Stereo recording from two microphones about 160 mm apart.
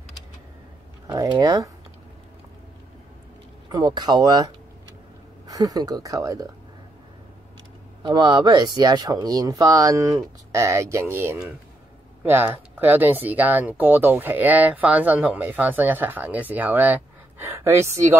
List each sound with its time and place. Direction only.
1.4 s speech: 20° right (ahead or behind)
3.6 s speech: 25° right (ahead or behind)
5.5 s speech: 20° right (ahead or behind)
8.0 s speech: 30° right (ahead or behind)